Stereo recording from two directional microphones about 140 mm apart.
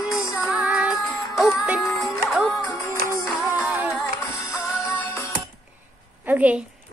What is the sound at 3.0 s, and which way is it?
Music, 90° right.